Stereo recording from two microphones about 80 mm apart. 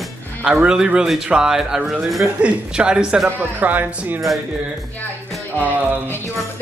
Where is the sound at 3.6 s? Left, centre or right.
Right.